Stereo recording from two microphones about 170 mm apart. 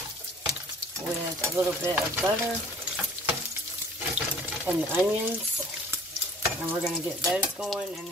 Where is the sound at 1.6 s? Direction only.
15° right (ahead or behind).